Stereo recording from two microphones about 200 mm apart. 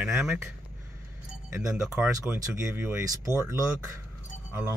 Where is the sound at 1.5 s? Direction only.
5° right (ahead or behind).